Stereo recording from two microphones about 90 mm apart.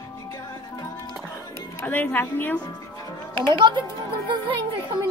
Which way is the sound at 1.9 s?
20° left (ahead or behind).